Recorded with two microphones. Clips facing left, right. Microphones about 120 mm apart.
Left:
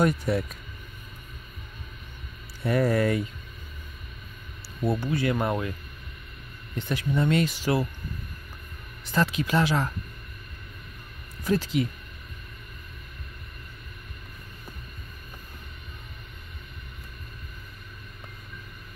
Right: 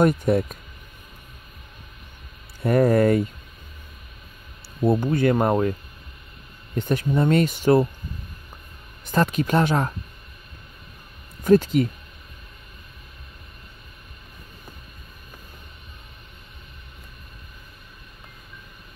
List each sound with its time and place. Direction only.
0.0 s speech: 50° right (ahead or behind)
2.6 s speech: 50° right (ahead or behind)
4.8 s speech: 50° right (ahead or behind)
6.7 s speech: 45° right (ahead or behind)
9.0 s speech: 45° right (ahead or behind)
11.4 s speech: 50° right (ahead or behind)